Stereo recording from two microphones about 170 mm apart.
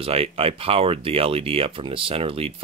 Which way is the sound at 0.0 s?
35° right (ahead or behind).